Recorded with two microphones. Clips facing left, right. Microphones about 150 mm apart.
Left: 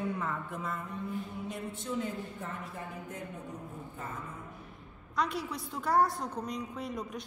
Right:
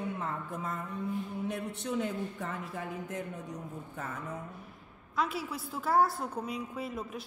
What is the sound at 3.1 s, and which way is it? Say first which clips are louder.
A man's voice: right 3 dB; 85° right.